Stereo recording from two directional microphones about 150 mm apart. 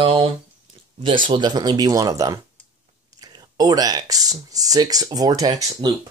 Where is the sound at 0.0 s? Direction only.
40° right (ahead or behind).